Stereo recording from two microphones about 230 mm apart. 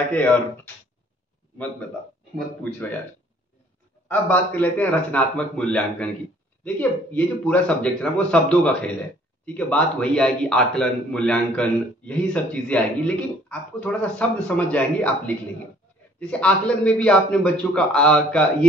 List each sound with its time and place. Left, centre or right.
4.1 s a man's voice: centre